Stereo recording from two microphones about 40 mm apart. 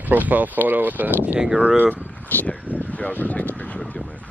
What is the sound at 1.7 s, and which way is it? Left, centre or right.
Speech, right.